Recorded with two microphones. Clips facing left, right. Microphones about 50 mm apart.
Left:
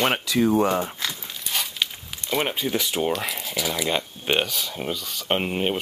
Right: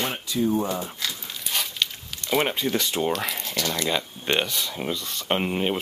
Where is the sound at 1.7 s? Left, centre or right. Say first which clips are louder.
Even; centre.